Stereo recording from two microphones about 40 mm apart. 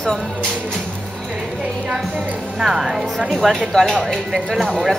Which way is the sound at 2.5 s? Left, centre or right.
Centre.